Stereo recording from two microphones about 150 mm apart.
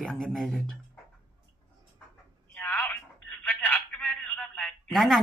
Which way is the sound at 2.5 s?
10° left (ahead or behind).